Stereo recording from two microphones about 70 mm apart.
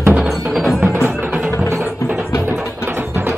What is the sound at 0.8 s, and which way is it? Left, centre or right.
Music, right.